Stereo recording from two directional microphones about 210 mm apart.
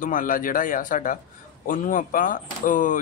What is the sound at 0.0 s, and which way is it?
Speech, 40° left (ahead or behind).